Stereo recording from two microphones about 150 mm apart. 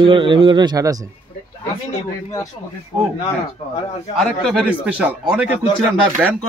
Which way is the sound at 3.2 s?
40° left (ahead or behind).